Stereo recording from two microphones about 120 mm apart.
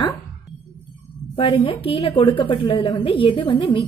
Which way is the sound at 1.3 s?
50° left (ahead or behind).